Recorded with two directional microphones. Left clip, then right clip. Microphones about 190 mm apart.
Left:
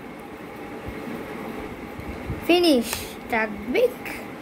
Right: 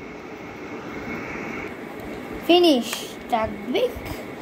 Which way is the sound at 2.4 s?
15° left (ahead or behind).